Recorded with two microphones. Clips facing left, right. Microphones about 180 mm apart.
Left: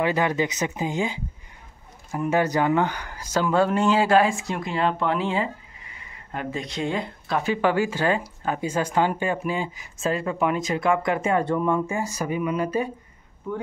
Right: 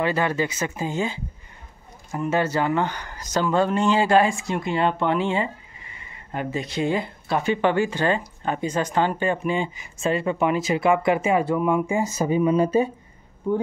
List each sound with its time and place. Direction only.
0.0 s speech: 15° left (ahead or behind); by 12.9 s 25° right (ahead or behind)